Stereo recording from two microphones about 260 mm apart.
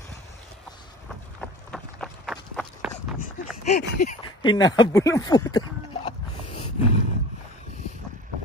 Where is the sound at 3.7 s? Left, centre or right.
Left.